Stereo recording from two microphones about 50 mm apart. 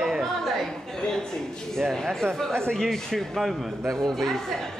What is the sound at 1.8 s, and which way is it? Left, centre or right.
Speech, centre.